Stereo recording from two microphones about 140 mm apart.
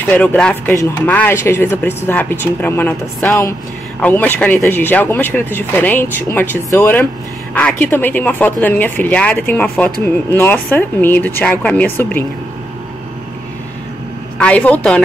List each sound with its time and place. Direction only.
0.1 s speech: 10° left (ahead or behind)
14.4 s speech: 10° left (ahead or behind)